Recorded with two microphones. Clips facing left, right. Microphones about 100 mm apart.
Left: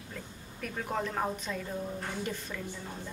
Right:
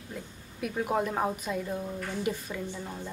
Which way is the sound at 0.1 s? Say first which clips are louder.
Right 4 dB; 10° right (ahead or behind).